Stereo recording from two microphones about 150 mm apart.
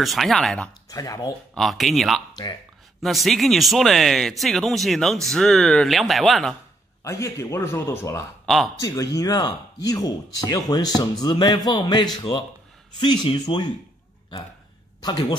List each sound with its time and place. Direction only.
0.0 s speech: centre (ahead or behind)
0.8 s speech: 25° left (ahead or behind)
1.5 s speech: centre (ahead or behind)
7.0 s speech: 20° left (ahead or behind)
8.5 s speech: centre (ahead or behind)
8.8 s speech: 20° left (ahead or behind)
15.0 s speech: 30° left (ahead or behind)